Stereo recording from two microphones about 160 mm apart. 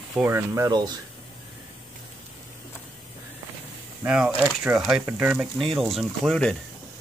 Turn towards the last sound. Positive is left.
turn(degrees=5)  # may be behind; listen again after turning